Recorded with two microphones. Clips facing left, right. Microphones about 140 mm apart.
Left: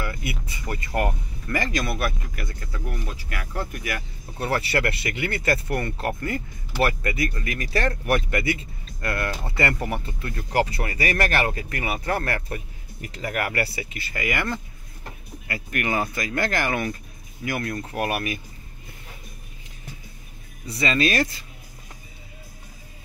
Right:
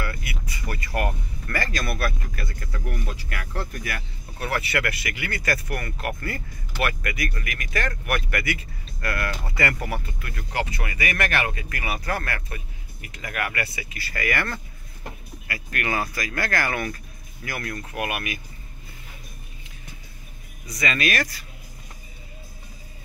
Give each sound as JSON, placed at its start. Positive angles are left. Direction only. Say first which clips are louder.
{"t": 0.0, "sound": "speech", "louder": "left 2 dB", "side_deg": 20}
{"t": 2.7, "sound": "speech", "louder": "right 1 dB", "side_deg": 5}
{"t": 4.4, "sound": "speech", "louder": "left 2 dB", "side_deg": 30}
{"t": 11.8, "sound": "speech", "louder": "left 2 dB", "side_deg": 25}
{"t": 20.6, "sound": "speech", "louder": "left 3 dB", "side_deg": 30}